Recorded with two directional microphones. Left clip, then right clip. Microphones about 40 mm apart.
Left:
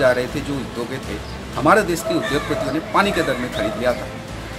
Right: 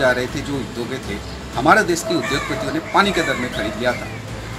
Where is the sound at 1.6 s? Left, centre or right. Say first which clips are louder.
Right 1 dB; centre.